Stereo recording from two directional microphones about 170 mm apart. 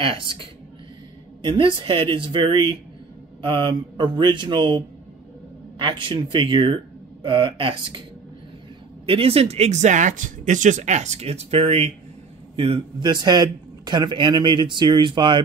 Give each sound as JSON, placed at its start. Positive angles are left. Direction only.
{"t": 0.0, "sound": "a woman's voice", "side_deg": -30}
{"t": 9.0, "sound": "a man's voice", "side_deg": -35}